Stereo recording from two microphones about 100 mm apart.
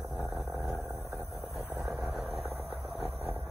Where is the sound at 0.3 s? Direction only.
Centre (ahead or behind).